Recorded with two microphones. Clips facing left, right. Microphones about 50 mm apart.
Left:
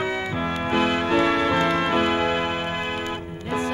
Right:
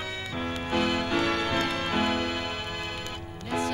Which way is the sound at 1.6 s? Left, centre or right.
Left.